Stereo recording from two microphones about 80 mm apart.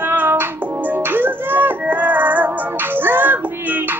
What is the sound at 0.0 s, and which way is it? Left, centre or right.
Music, right.